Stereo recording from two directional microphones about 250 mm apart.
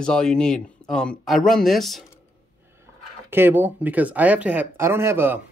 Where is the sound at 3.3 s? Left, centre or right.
Centre.